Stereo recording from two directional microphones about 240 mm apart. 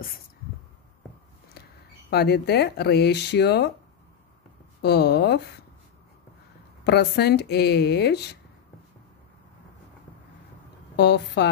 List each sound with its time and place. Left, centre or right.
2.0 s speech: left
4.8 s speech: left
6.8 s speech: left
11.0 s speech: left